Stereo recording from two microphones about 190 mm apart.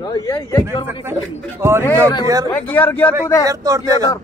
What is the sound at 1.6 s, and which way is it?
Speech, 15° right (ahead or behind).